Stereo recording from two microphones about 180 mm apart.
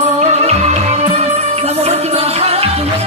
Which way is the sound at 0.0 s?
40° right (ahead or behind).